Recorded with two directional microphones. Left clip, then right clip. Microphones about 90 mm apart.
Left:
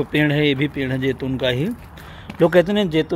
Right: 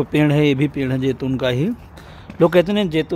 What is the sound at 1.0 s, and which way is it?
Speech, 90° right.